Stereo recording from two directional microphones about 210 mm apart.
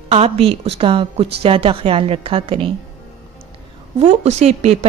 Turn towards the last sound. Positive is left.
turn(degrees=-30)  # may be behind; listen again after turning